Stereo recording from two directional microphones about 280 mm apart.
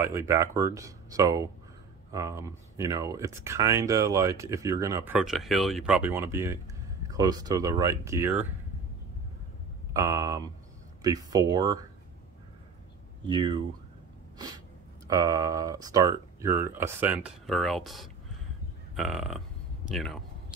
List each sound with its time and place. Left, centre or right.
0.0 s speech: centre
9.9 s speech: centre
13.3 s speech: centre
15.0 s speech: centre
18.9 s a sound: centre